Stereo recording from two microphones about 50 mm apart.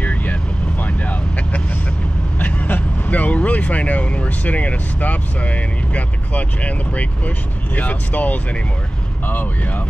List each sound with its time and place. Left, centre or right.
0.0 s vehicle: left
2.3 s speech: left